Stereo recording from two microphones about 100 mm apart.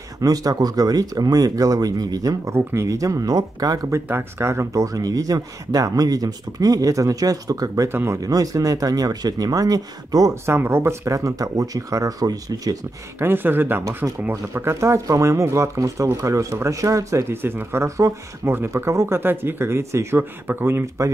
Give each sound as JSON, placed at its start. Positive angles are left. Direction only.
{"t": 0.2, "sound": "speech", "side_deg": -35}
{"t": 2.5, "sound": "speech", "side_deg": -25}
{"t": 4.1, "sound": "speech", "side_deg": -25}
{"t": 7.9, "sound": "speech", "side_deg": -25}
{"t": 8.2, "sound": "speech", "side_deg": -35}
{"t": 10.4, "sound": "speech", "side_deg": -25}
{"t": 13.2, "sound": "speech", "side_deg": -20}